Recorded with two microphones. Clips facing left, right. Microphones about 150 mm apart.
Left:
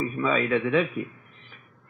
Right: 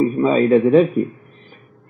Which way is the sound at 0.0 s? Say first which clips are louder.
Right 10 dB; 35° right (ahead or behind).